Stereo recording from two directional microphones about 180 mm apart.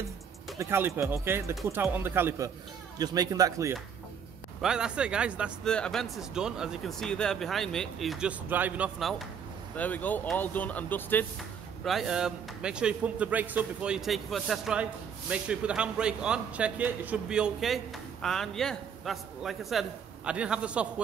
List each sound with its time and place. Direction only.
0.6 s speech: 15° right (ahead or behind)
4.6 s speech: 5° right (ahead or behind)
9.8 s speech: 10° left (ahead or behind)
11.8 s speech: centre (ahead or behind)